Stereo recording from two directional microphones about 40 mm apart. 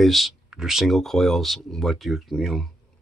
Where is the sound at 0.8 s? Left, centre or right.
Centre.